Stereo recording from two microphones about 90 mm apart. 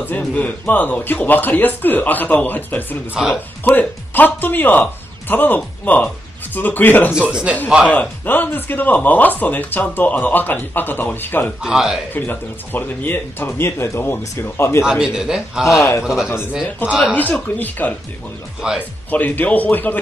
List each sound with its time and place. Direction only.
0.2 s speech: 15° left (ahead or behind)
7.2 s a man's voice: 10° right (ahead or behind)
7.8 s speech: 15° left (ahead or behind)
11.6 s speech: 5° right (ahead or behind)
12.1 s speech: 20° left (ahead or behind)
14.8 s a man's voice: 5° right (ahead or behind)
15.6 s a man's voice: 35° left (ahead or behind)
16.0 s a man's voice: 5° right (ahead or behind)
17.1 s speech: 20° left (ahead or behind)
18.6 s a man's voice: 10° right (ahead or behind)
19.0 s speech: 20° left (ahead or behind)